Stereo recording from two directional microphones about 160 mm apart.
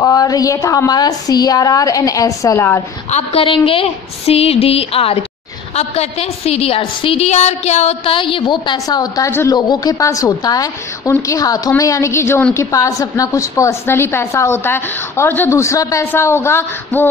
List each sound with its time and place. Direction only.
0.0 s a woman's voice: 25° left (ahead or behind)
3.1 s a woman's voice: 40° left (ahead or behind); by 17.0 s 15° left (ahead or behind)